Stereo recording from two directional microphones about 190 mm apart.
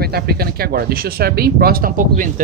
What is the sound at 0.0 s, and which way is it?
Speech, 55° right (ahead or behind).